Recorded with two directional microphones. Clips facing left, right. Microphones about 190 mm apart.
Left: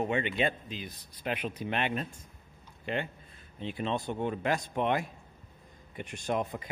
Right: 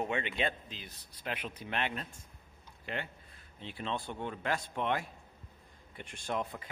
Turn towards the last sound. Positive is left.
turn(degrees=15)  # may be behind; listen again after turning